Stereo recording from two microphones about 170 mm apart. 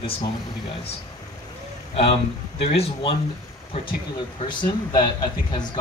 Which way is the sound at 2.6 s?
35° left (ahead or behind).